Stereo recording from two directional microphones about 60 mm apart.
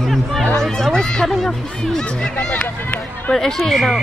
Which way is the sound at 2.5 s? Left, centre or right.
Left.